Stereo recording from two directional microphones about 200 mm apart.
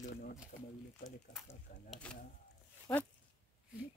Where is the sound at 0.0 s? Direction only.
45° left (ahead or behind).